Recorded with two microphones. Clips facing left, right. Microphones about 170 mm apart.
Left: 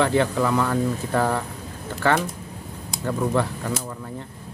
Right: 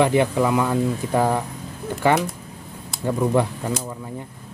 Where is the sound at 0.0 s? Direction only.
15° right (ahead or behind).